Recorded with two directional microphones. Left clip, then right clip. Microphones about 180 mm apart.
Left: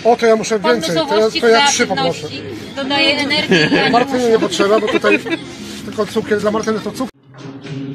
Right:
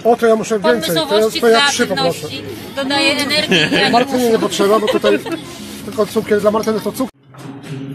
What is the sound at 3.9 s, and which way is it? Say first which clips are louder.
Speech: even; 30° right (ahead or behind).